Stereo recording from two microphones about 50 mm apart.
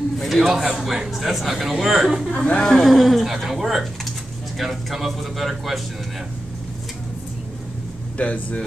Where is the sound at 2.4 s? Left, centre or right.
Left.